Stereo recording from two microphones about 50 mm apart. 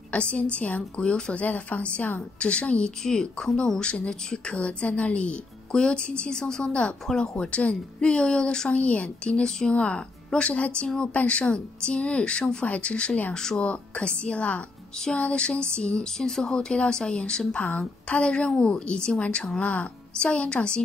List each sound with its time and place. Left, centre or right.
0.1 s speech: left
1.4 s speech: left; by 17.6 s centre
17.6 s speech: left
19.6 s speech: left